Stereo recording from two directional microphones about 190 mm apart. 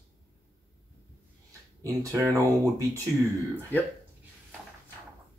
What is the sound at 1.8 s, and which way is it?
Speech, 15° right (ahead or behind).